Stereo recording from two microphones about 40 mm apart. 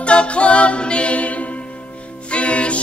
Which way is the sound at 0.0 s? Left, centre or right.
Left.